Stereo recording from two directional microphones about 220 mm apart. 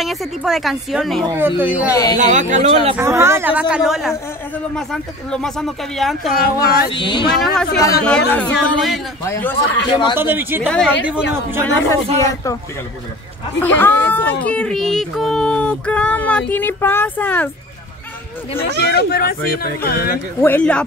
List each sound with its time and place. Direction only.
0.0 s speech: centre (ahead or behind)
1.2 s speech: 15° right (ahead or behind)
1.9 s speech: 15° left (ahead or behind)
2.1 s speech: 35° right (ahead or behind)
3.0 s speech: 10° right (ahead or behind)
6.3 s speech: 40° left (ahead or behind)
6.9 s speech: 20° left (ahead or behind)
7.2 s speech: centre (ahead or behind)
9.8 s speech: 20° left (ahead or behind)
10.1 s speech: 10° right (ahead or behind)
10.7 s speech: 5° left (ahead or behind)
13.6 s speech: 10° left (ahead or behind)
18.9 s speech: 45° left (ahead or behind)
20.3 s speech: 10° left (ahead or behind)